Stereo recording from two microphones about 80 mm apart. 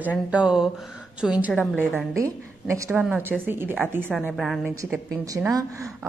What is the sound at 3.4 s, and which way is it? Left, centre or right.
Speech, right.